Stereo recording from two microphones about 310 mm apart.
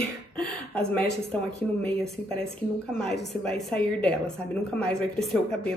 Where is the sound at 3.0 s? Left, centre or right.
Centre.